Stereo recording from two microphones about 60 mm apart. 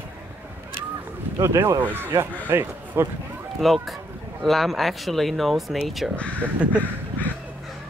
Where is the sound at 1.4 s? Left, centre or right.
Right.